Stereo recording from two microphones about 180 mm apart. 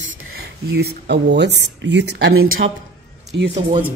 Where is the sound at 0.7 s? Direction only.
65° right (ahead or behind).